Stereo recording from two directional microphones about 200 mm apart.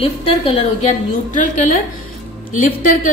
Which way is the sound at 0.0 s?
30° left (ahead or behind).